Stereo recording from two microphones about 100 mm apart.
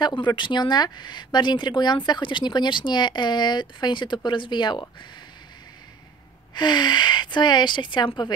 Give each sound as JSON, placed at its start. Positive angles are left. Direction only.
{"t": 0.2, "sound": "speech", "side_deg": 50}
{"t": 6.5, "sound": "speech", "side_deg": 45}